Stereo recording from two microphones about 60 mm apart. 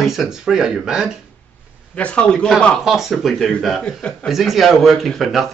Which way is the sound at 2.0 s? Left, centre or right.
Centre.